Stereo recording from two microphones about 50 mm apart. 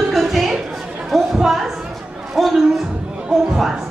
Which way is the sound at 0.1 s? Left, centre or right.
Centre.